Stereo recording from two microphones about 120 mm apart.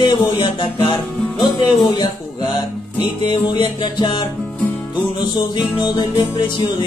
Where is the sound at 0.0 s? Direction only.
40° left (ahead or behind).